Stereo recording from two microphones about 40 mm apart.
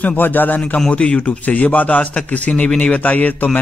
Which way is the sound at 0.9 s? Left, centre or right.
Left.